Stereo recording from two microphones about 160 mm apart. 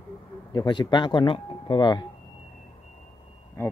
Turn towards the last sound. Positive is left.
turn(degrees=15)  # may be behind; listen again after turning